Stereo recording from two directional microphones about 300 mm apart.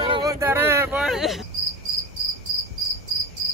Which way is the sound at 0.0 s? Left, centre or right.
Centre.